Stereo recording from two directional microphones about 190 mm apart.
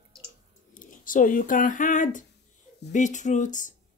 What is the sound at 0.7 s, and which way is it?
Speech, 45° left (ahead or behind).